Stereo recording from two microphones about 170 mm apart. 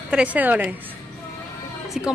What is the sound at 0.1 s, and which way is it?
Speech, 5° right (ahead or behind).